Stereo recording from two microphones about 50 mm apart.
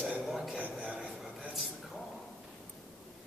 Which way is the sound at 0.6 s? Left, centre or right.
Left.